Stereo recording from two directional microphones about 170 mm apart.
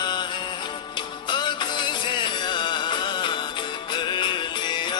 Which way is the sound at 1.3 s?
25° left (ahead or behind).